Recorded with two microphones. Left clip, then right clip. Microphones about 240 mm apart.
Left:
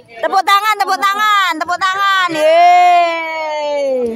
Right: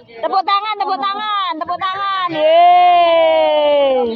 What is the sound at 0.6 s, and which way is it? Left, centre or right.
Speech, left.